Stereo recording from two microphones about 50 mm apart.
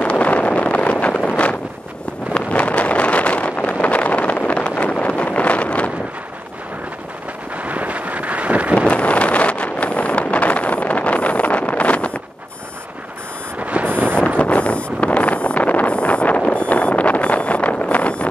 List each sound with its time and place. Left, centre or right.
0.0 s wind noise: left
2.3 s vehicle: left
7.5 s wind noise: right
8.7 s vehicle: left
13.8 s vehicle: right
14.4 s vehicle: left